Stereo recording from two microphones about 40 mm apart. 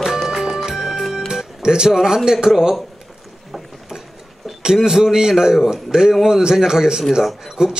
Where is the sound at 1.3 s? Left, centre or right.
Centre.